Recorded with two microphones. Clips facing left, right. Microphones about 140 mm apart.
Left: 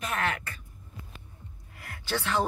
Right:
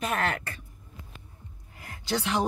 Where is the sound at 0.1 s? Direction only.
40° right (ahead or behind).